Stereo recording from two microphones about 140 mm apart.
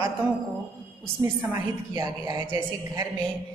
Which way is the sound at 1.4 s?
25° right (ahead or behind).